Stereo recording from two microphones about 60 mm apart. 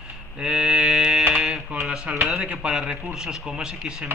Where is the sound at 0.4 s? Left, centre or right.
Centre.